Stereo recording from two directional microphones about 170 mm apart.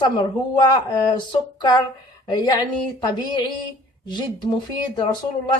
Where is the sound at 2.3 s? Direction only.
25° left (ahead or behind).